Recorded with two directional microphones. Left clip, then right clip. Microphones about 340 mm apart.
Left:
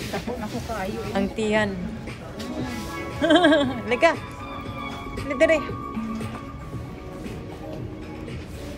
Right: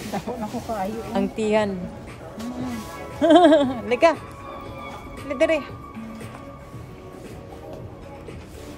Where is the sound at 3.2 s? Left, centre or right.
Centre.